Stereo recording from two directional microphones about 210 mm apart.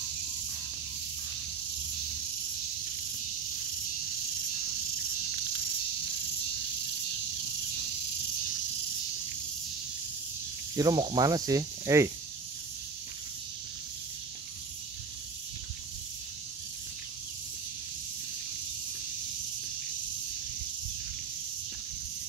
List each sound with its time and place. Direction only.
10.8 s speech: 20° right (ahead or behind)